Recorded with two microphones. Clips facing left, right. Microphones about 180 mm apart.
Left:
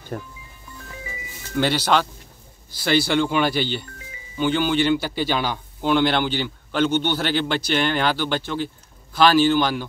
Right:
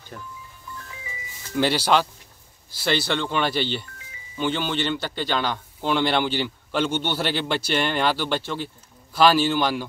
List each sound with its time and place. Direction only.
0.1 s speech: 50° left (ahead or behind)
1.5 s a man's voice: 5° right (ahead or behind)